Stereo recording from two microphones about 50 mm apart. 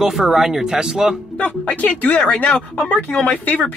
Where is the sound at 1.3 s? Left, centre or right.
Left.